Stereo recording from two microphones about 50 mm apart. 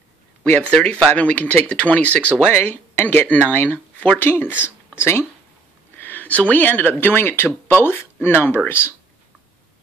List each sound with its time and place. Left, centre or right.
0.6 s speech: left
2.5 s speech: left
4.2 s speech: left
5.9 s speech: left